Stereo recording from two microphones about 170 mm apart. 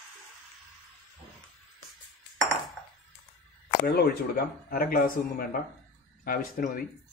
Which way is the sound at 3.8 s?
65° left (ahead or behind).